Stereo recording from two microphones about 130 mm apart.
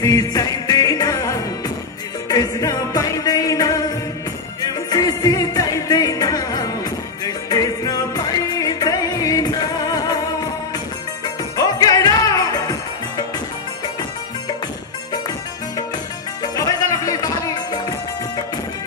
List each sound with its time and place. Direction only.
0.0 s music: 30° left (ahead or behind)
16.5 s music: 30° left (ahead or behind)